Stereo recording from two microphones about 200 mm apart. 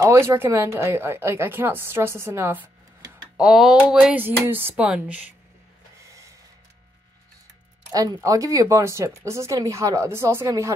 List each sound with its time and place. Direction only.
0.0 s a woman's voice: 15° right (ahead or behind)
7.9 s speech: 20° right (ahead or behind)